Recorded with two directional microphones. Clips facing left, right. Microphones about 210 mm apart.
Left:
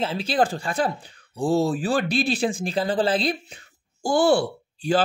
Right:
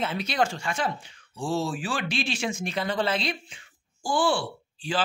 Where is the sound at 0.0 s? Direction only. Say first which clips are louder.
Left 4 dB; 30° left (ahead or behind).